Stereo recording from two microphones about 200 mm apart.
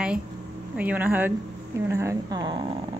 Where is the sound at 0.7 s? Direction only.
5° right (ahead or behind); by 2.8 s 25° right (ahead or behind).